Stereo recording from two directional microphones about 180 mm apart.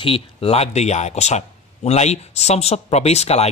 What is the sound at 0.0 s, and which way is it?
Speech, 30° left (ahead or behind).